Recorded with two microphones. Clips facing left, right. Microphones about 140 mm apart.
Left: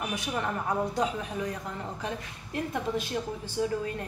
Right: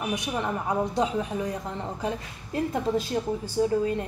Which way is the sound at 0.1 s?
20° right (ahead or behind).